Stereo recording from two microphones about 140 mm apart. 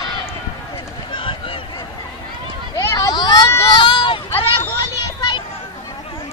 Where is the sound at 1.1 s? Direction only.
40° left (ahead or behind).